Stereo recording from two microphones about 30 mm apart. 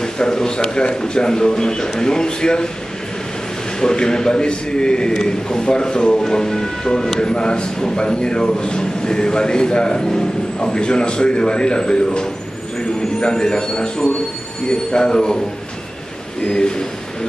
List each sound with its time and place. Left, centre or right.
0.0 s speech: left
3.8 s speech: left
13.2 s speech: left
16.4 s speech: left